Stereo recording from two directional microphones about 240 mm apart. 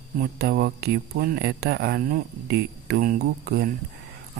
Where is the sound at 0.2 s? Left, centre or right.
Right.